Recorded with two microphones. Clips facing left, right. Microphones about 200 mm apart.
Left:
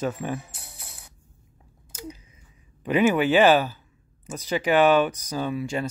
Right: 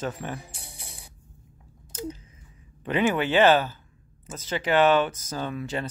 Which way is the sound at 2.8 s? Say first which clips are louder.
Left 4 dB; 10° left (ahead or behind).